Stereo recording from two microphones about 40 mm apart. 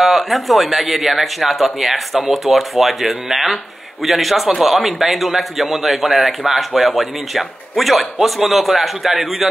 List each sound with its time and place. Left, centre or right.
0.0 s speech: centre